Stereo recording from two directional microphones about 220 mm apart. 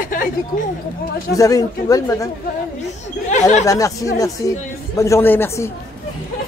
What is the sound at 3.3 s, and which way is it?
Speech, 30° left (ahead or behind).